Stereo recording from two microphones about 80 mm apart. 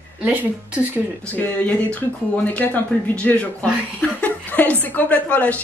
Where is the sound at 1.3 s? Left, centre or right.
Left.